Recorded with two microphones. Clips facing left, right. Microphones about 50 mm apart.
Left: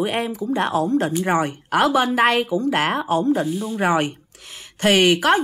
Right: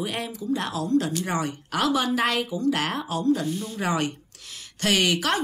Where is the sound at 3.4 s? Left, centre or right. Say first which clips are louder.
Left 6 dB; centre.